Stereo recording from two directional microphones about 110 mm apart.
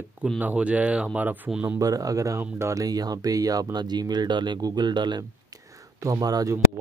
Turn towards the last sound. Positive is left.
turn(degrees=-35)  # may be behind; listen again after turning